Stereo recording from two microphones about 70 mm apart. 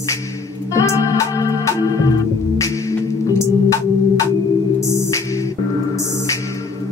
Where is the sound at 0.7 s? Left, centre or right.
Left.